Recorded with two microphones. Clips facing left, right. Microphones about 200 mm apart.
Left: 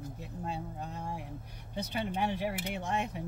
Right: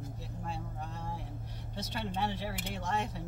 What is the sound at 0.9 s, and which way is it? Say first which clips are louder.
Speech: left 2 dB; 15° left (ahead or behind).